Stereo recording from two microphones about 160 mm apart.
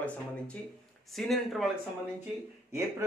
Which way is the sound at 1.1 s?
Centre (ahead or behind).